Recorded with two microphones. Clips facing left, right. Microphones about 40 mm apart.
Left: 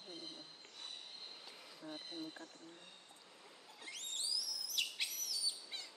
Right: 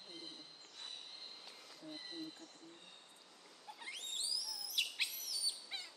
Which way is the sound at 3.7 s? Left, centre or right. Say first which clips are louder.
Right 1 dB; centre.